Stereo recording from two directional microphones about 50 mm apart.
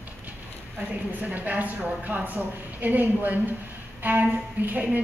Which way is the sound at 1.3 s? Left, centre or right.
Right.